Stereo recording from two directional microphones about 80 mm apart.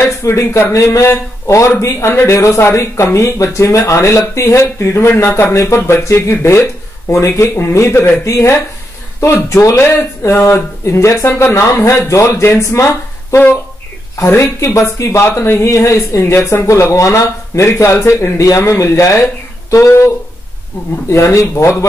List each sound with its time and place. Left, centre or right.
0.0 s speech: left
21.1 s speech: left